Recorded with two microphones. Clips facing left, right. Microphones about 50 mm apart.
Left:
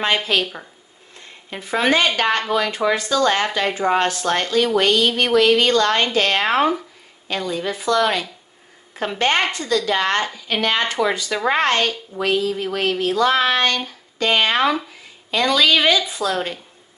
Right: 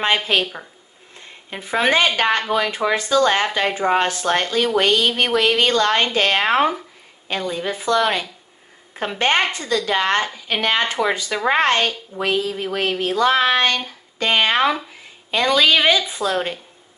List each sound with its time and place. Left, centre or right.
0.0 s speech: right
1.5 s speech: right